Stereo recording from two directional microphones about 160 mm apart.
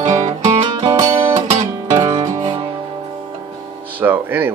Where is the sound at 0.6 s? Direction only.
30° right (ahead or behind).